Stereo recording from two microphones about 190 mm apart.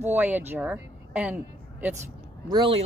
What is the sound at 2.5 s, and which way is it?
Speech, 25° right (ahead or behind).